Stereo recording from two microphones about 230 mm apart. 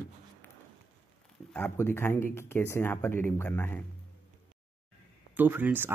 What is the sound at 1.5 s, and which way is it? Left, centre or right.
Speech, centre.